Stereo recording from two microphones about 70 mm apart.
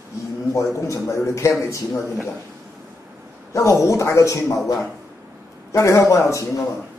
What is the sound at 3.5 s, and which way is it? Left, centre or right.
Speech, left.